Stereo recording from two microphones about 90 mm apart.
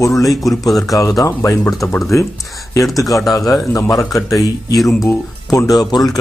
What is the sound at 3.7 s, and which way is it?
Speech, 40° left (ahead or behind).